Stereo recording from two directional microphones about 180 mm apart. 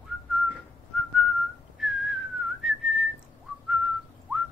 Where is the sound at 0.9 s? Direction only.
5° left (ahead or behind).